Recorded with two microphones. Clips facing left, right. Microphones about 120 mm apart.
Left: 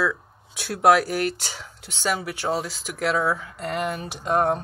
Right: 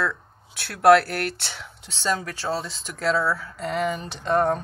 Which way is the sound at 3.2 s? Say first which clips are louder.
Left 1 dB; 20° left (ahead or behind).